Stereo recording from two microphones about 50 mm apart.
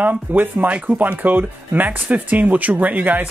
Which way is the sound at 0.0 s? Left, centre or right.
Right.